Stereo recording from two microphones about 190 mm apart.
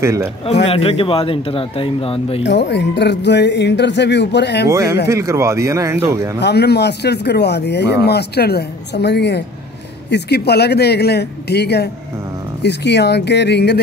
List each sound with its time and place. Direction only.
0.0 s speech: 15° right (ahead or behind)
0.7 s speech: 30° left (ahead or behind)
2.4 s speech: 65° left (ahead or behind)
4.6 s speech: 15° right (ahead or behind)
6.4 s speech: 60° left (ahead or behind)